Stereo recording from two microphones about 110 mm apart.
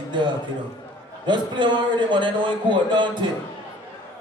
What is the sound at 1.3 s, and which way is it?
Speech, 45° right (ahead or behind).